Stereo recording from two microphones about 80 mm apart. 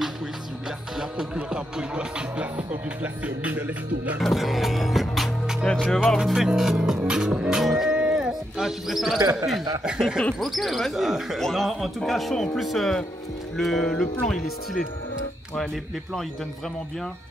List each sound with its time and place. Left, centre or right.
0.9 s music: centre
4.2 s music: centre
9.2 s speech: right
9.8 s speech: centre